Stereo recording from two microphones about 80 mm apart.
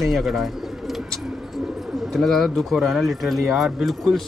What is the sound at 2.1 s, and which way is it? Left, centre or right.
Speech, centre.